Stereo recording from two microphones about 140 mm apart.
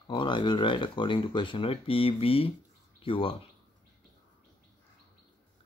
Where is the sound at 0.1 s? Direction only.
35° left (ahead or behind).